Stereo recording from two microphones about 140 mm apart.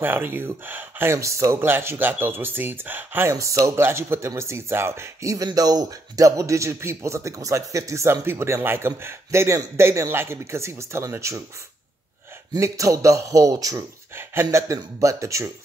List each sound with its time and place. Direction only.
0.0 s speech: 15° right (ahead or behind)
12.5 s speech: 20° right (ahead or behind)